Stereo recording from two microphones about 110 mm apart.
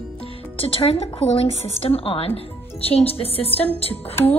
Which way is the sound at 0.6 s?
55° left (ahead or behind).